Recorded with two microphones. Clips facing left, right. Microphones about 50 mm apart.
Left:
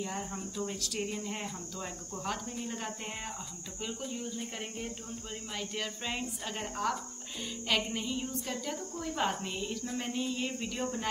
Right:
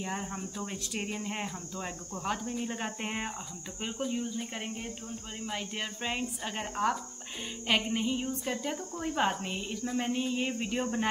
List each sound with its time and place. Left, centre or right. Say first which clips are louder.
0.0 s a woman's voice: right 1 dB; right
3.0 s speech: right 6 dB; right
4.1 s a woman's voice: right 4 dB; centre